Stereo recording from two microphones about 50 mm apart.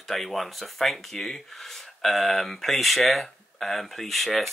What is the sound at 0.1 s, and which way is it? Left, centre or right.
Speech, centre.